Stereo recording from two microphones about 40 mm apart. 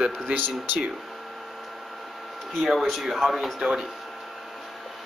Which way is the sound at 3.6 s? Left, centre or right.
Centre.